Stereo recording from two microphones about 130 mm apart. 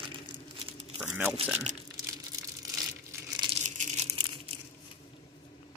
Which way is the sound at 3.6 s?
70° right (ahead or behind).